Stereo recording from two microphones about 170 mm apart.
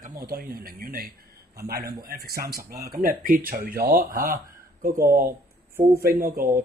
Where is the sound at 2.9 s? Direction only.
60° right (ahead or behind).